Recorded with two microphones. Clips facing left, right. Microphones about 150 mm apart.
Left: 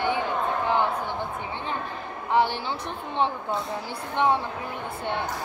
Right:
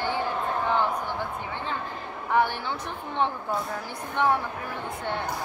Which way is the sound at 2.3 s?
25° left (ahead or behind).